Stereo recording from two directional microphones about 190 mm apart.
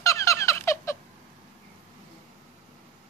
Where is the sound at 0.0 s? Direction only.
15° left (ahead or behind).